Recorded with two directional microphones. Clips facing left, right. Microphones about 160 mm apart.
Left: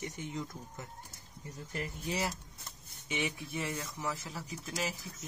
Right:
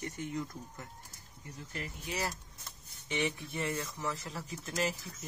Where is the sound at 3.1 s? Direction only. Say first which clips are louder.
Right 2 dB; 5° left (ahead or behind).